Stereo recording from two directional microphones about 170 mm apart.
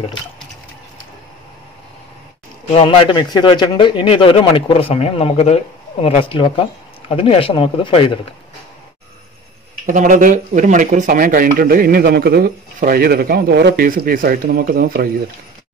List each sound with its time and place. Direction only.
2.7 s a man's voice: 30° left (ahead or behind)
9.8 s speech: 50° right (ahead or behind)